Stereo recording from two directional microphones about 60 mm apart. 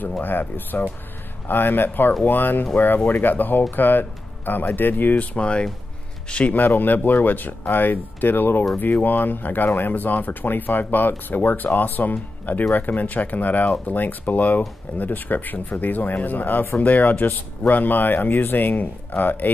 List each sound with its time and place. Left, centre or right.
0.2 s speech: left